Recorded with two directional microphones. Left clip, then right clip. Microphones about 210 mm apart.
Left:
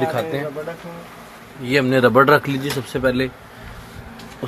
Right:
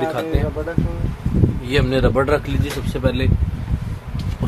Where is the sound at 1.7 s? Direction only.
10° left (ahead or behind).